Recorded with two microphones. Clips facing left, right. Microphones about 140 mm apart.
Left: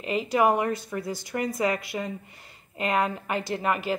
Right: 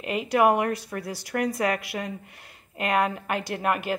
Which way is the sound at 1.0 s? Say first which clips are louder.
Right 4 dB; 65° right (ahead or behind).